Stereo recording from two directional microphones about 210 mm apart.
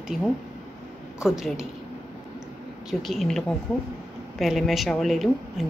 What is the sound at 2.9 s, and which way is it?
Speech, centre (ahead or behind).